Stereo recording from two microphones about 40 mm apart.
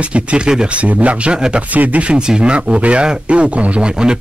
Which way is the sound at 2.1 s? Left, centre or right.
Right.